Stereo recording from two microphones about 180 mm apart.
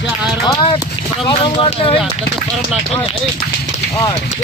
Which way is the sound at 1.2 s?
30° left (ahead or behind).